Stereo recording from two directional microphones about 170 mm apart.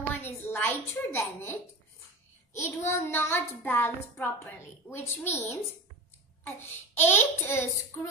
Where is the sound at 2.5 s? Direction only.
15° left (ahead or behind).